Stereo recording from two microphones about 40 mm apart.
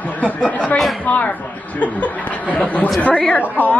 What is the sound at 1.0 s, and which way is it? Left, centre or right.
A man's voice, left.